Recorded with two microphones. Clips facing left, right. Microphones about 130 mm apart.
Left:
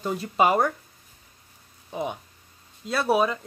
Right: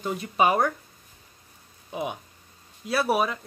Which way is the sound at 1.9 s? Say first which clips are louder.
Left 1 dB; 10° right (ahead or behind).